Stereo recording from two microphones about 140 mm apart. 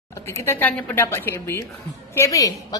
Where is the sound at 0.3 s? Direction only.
20° left (ahead or behind).